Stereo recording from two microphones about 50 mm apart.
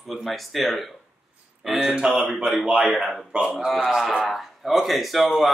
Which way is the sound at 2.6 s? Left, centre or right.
Right.